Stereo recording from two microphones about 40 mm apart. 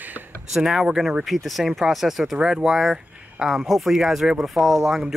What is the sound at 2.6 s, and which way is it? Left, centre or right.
Speech, centre.